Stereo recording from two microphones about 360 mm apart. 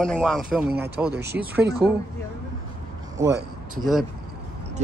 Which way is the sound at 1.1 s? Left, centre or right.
Right.